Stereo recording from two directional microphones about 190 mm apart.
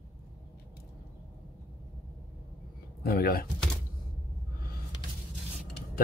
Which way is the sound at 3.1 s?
50° left (ahead or behind).